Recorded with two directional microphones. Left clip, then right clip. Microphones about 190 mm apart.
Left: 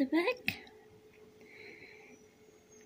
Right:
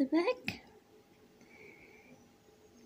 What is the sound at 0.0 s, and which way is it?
Speech, 15° right (ahead or behind).